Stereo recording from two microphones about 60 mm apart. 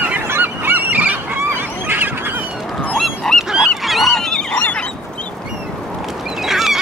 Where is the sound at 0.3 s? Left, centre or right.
Right.